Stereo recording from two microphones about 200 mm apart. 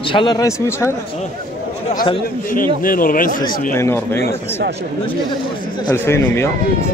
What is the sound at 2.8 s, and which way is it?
Speech, 45° left (ahead or behind).